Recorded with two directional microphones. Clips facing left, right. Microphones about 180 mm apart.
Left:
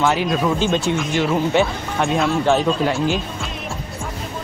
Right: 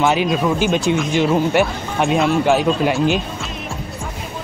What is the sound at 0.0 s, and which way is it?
Speech, 20° right (ahead or behind).